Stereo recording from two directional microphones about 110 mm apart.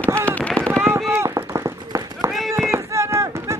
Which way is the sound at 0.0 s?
15° left (ahead or behind).